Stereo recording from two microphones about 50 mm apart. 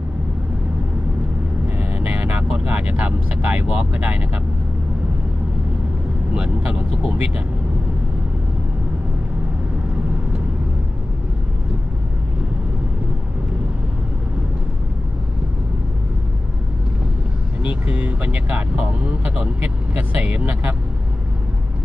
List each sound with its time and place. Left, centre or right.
1.8 s vehicle: right
2.5 s speech: right
6.3 s speech: centre
17.6 s speech: right